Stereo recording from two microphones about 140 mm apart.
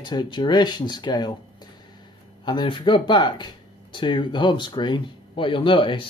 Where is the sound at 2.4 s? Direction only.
35° left (ahead or behind).